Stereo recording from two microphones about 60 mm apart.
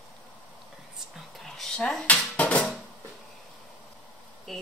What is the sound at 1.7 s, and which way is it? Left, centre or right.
Speech, centre.